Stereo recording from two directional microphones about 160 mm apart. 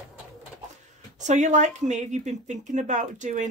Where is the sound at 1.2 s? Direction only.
50° right (ahead or behind).